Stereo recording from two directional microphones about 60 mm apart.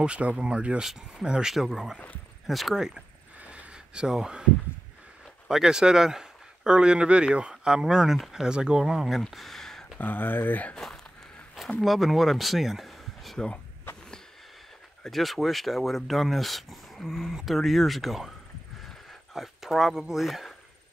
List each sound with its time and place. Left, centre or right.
0.0 s speech: centre
3.3 s a sound: right
5.5 s speech: centre
9.3 s a sound: centre
9.9 s speech: left
11.8 s speech: centre
15.0 s speech: centre
19.3 s speech: centre